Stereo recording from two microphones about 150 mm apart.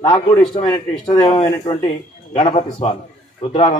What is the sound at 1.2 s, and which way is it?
A man's voice, 35° left (ahead or behind).